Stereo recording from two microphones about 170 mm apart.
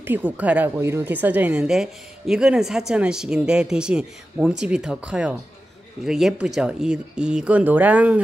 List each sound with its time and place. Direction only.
0.0 s a woman's voice: 10° right (ahead or behind)